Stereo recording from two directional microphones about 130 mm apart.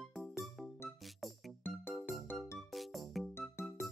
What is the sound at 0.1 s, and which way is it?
Music, 5° right (ahead or behind).